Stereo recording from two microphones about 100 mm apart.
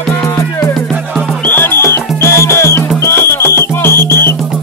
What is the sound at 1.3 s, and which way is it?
Music, 15° left (ahead or behind).